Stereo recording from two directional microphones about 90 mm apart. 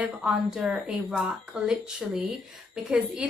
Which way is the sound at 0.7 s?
15° right (ahead or behind).